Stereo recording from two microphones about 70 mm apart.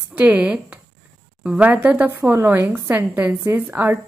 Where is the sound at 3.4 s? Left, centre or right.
Right.